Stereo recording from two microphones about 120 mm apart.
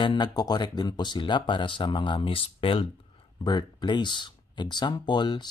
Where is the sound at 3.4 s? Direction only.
40° left (ahead or behind).